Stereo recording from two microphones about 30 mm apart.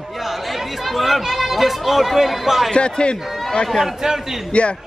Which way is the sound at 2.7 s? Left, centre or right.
Left.